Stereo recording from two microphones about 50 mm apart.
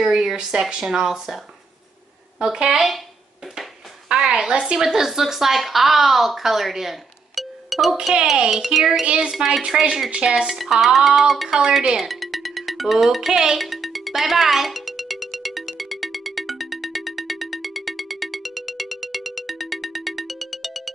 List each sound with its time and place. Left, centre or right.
0.0 s speech: centre
4.1 s a woman's voice: centre
9.0 s speech: centre
9.3 s speech: centre
10.6 s speech: centre
12.0 s music: centre